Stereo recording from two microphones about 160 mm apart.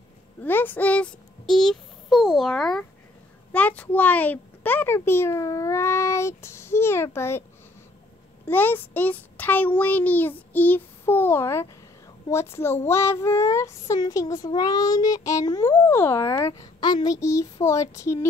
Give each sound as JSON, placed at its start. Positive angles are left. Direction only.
{"t": 0.4, "sound": "a child's voice", "side_deg": 10}
{"t": 8.5, "sound": "a child's voice", "side_deg": 10}
{"t": 12.3, "sound": "child singing", "side_deg": 15}